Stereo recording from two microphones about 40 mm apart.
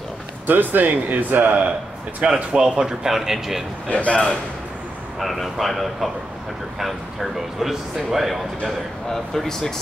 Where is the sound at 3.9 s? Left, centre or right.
Left.